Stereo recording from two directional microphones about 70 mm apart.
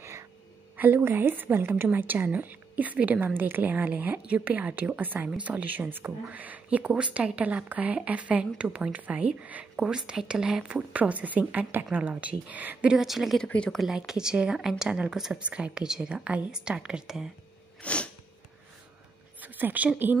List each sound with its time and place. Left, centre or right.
0.0 s a sound: right
0.7 s a woman's voice: right
12.9 s speech: centre
13.4 s speech: centre
13.7 s a woman's voice: centre
17.8 s sneeze: centre
19.4 s a woman's voice: right